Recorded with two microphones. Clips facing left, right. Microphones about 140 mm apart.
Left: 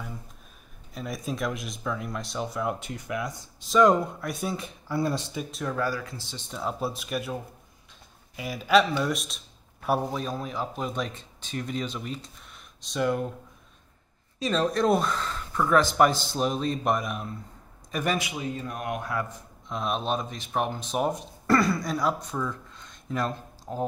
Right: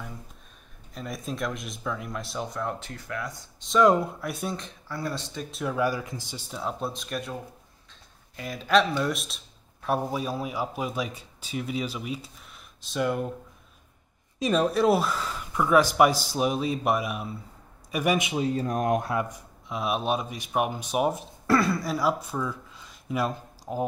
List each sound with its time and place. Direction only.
0.9 s speech: centre (ahead or behind)
2.8 s speech: 15° left (ahead or behind)
3.6 s speech: centre (ahead or behind)
5.8 s speech: 20° right (ahead or behind)
6.5 s speech: centre (ahead or behind)
8.4 s speech: 5° left (ahead or behind)
14.4 s speech: 10° right (ahead or behind)
18.3 s speech: 35° right (ahead or behind)
19.0 s speech: 15° right (ahead or behind)